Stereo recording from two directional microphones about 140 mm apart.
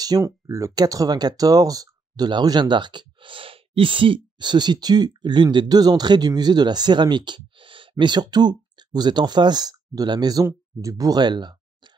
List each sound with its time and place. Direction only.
0.0 s speech: 25° right (ahead or behind)